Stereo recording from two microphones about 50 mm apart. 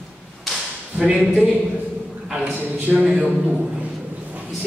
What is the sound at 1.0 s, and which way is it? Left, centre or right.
Speech, centre.